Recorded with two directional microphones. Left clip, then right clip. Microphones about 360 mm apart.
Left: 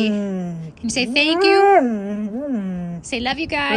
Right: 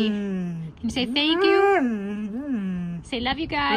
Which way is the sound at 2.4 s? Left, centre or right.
Left.